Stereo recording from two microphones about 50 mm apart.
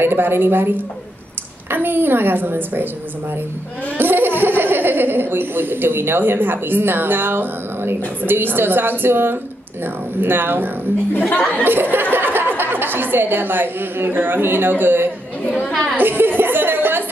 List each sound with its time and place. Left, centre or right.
0.0 s speech: right
4.0 s speech: right
11.1 s speech: left
11.6 s speech: right
16.0 s a sound: right